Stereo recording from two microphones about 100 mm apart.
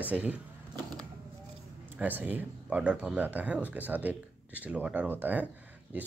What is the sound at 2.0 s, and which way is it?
Speech, 15° right (ahead or behind).